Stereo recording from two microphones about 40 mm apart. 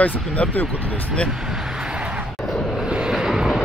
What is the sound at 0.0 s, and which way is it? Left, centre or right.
Speech, left.